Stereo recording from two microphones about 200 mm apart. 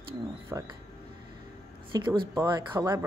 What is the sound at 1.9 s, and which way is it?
Speech, 20° right (ahead or behind).